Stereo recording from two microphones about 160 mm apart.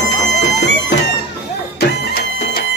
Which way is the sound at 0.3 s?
90° left.